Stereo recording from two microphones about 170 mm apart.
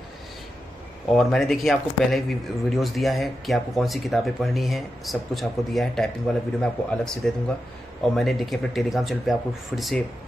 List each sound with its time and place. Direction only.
1.1 s speech: centre (ahead or behind)